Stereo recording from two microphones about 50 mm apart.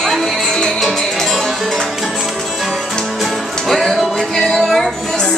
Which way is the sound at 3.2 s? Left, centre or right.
Centre.